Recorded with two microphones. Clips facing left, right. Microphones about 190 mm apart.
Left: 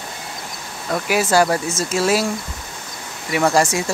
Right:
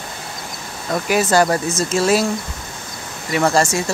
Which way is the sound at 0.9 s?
10° left (ahead or behind).